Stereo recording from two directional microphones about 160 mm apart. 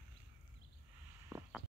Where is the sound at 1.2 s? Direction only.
10° right (ahead or behind).